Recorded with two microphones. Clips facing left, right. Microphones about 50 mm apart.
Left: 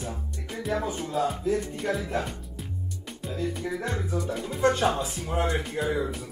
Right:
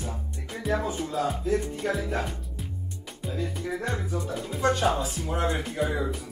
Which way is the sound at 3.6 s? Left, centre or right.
Centre.